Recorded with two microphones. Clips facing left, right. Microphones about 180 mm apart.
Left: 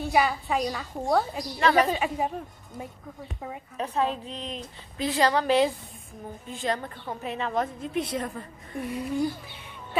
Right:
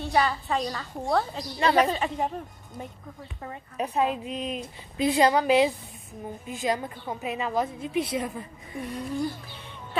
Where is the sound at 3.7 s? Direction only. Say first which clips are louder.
Right 2 dB; 10° right (ahead or behind).